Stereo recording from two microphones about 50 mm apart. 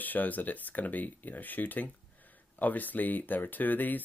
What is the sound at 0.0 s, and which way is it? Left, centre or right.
Speech, left.